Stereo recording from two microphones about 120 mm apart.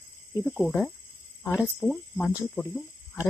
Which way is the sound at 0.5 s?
5° left (ahead or behind).